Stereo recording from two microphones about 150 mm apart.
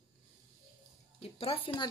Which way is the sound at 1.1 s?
40° left (ahead or behind).